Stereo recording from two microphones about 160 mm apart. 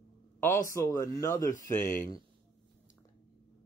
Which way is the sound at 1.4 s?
55° left (ahead or behind).